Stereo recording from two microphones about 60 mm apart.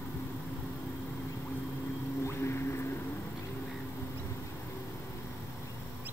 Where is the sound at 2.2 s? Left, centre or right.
Left.